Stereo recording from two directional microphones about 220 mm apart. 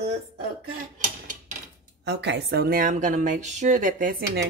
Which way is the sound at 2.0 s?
50° right (ahead or behind).